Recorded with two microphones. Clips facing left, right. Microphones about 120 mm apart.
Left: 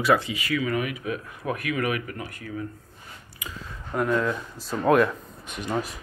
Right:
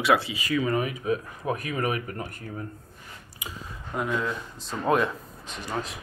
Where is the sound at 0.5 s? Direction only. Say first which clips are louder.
Right 1 dB; 35° right (ahead or behind).